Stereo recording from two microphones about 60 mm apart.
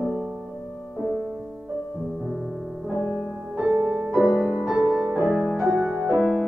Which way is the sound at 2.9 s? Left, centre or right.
Right.